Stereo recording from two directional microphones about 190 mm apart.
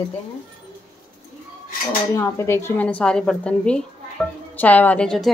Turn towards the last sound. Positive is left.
turn(degrees=5)  # may be behind; listen again after turning